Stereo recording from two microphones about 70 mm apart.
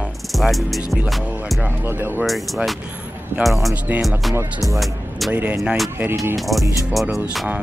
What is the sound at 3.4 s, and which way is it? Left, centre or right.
Speech, centre.